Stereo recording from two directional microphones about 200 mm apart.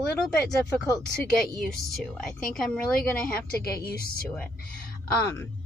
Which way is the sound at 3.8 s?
50° left (ahead or behind).